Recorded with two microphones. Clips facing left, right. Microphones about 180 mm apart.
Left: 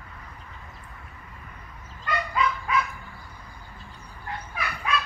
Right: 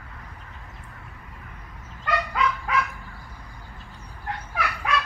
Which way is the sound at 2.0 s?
80° right.